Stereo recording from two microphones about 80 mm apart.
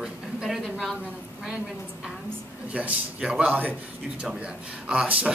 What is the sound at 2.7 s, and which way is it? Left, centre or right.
A man's voice, centre.